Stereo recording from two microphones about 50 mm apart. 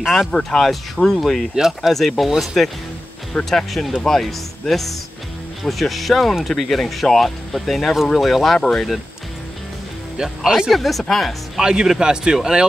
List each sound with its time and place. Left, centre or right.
0.0 s speech: centre
0.3 s speech: centre
1.5 s speech: centre
10.1 s speech: centre
10.7 s speech: centre
11.6 s speech: centre